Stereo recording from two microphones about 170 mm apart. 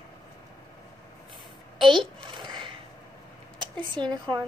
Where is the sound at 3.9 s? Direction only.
25° right (ahead or behind).